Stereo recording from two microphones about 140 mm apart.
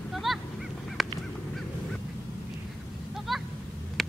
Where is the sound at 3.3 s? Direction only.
Centre (ahead or behind).